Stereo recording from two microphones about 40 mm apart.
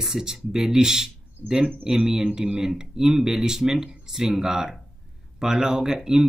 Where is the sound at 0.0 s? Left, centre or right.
Centre.